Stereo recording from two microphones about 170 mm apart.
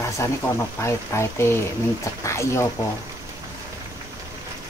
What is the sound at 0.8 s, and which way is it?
Speech, 15° left (ahead or behind).